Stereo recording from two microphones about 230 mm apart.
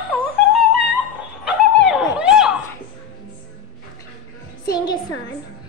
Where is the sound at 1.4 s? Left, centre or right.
Centre.